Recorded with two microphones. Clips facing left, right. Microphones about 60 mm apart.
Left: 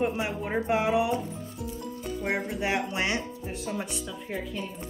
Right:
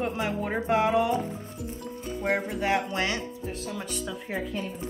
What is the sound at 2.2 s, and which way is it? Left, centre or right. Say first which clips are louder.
Speech: right 3 dB; centre.